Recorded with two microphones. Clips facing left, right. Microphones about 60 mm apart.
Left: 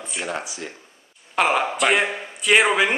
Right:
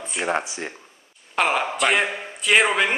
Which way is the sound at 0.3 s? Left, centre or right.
Right.